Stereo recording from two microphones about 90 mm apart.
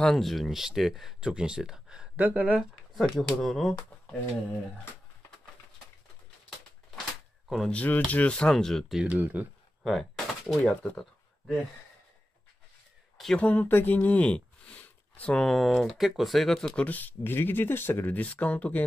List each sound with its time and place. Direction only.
0.0 s speech: 5° left (ahead or behind)
3.0 s speech: centre (ahead or behind)
7.4 s speech: centre (ahead or behind)
7.7 s speech: 20° left (ahead or behind)
9.0 s speech: 20° right (ahead or behind)
9.8 s speech: centre (ahead or behind)
13.4 s speech: 20° left (ahead or behind)
15.4 s speech: centre (ahead or behind)
16.8 s speech: 20° left (ahead or behind)